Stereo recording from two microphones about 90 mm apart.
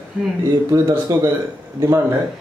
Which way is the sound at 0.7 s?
35° right (ahead or behind).